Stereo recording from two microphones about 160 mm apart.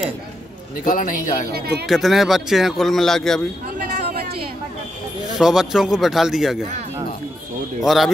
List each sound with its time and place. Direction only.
0.8 s a man's voice: 60° left (ahead or behind)
1.5 s speech: 85° right
1.9 s speech: centre (ahead or behind)
3.7 s a sound: 75° right (ahead or behind)
5.4 s speech: 5° right (ahead or behind)
7.8 s speech: centre (ahead or behind)